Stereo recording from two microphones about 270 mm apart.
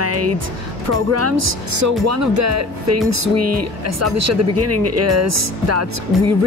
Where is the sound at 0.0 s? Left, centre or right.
Right.